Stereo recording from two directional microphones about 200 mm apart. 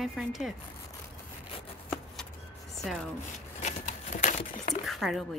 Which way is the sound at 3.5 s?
40° left (ahead or behind).